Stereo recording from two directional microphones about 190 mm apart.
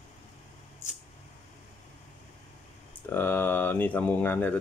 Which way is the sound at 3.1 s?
10° left (ahead or behind).